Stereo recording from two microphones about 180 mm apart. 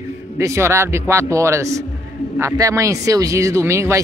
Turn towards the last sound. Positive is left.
turn(degrees=-15)  # may be behind; listen again after turning